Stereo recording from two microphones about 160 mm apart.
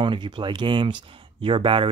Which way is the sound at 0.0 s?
30° right (ahead or behind).